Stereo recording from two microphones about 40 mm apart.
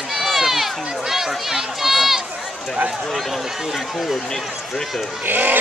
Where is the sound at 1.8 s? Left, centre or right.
Centre.